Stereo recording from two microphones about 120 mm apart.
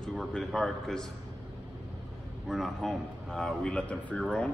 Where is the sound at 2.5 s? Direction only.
Centre (ahead or behind).